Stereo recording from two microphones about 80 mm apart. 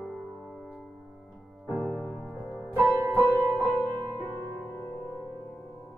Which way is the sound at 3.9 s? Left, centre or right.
Left.